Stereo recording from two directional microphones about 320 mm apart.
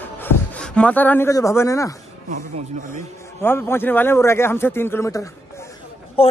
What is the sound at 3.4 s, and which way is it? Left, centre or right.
Speech, centre.